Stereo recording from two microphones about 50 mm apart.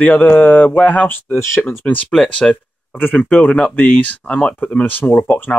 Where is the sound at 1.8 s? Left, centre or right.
Left.